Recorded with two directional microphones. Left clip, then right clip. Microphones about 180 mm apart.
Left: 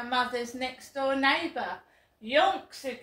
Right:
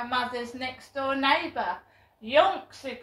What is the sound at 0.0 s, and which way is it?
A woman's voice, 20° left (ahead or behind).